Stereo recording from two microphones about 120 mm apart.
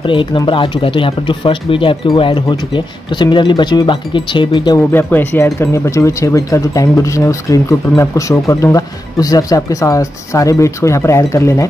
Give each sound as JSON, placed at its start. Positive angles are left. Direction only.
{"t": 0.0, "sound": "speech", "side_deg": 45}
{"t": 4.7, "sound": "speech", "side_deg": 15}